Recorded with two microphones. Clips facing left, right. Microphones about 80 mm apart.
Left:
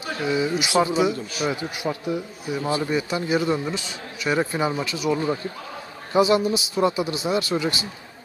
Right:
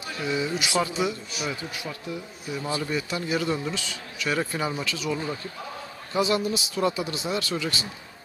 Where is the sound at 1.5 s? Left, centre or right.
Centre.